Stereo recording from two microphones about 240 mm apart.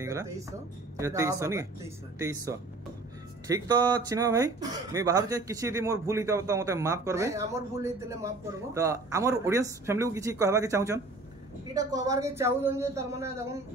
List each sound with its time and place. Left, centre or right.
0.0 s speech: centre